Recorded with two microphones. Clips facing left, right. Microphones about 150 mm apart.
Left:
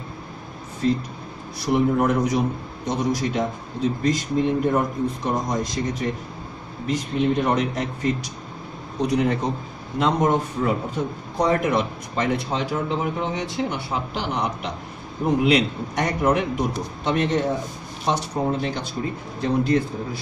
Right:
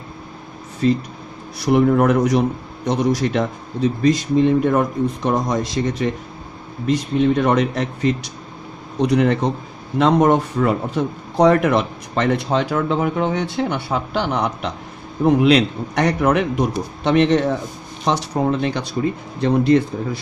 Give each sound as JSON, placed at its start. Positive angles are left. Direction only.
{"t": 1.7, "sound": "a man's voice", "side_deg": -80}
{"t": 15.2, "sound": "a man's voice", "side_deg": -75}